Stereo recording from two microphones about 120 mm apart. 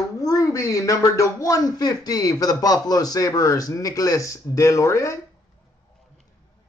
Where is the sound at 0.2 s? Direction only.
30° left (ahead or behind).